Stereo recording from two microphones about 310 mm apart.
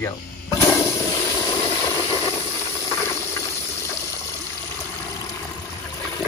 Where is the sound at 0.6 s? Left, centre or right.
Centre.